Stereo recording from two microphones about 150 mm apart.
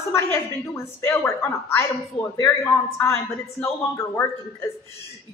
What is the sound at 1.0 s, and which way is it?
A man's voice, 15° left (ahead or behind).